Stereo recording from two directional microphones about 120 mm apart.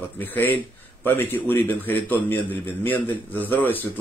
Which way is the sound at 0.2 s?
15° left (ahead or behind).